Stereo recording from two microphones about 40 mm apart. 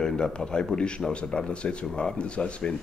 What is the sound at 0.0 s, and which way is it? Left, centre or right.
Speech, centre.